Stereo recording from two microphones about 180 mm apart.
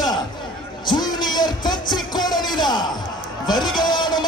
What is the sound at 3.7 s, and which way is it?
Speech, 25° left (ahead or behind).